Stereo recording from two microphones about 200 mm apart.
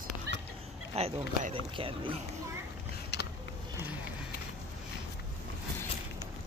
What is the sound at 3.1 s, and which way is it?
Vehicle, 55° left (ahead or behind).